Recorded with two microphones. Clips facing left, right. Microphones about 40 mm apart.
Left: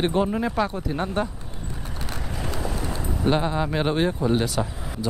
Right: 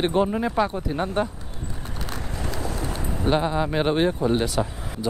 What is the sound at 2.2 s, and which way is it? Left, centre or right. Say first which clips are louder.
Vehicle: left 1 dB; centre.